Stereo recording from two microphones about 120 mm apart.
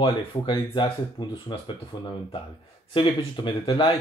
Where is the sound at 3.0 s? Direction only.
45° left (ahead or behind).